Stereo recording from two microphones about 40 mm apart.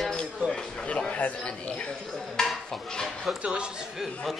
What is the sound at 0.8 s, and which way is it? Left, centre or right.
Speech, left.